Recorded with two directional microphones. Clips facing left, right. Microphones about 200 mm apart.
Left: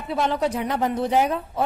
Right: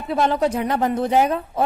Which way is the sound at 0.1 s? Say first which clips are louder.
Right 3 dB; 45° right (ahead or behind).